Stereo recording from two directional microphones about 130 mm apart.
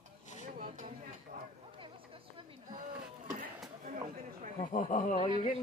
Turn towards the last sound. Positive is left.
turn(degrees=70)  # may be behind; listen again after turning